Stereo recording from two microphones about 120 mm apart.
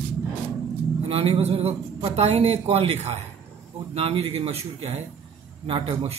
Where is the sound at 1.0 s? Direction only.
50° right (ahead or behind).